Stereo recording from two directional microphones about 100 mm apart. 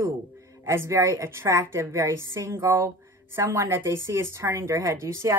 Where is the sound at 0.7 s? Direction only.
30° right (ahead or behind).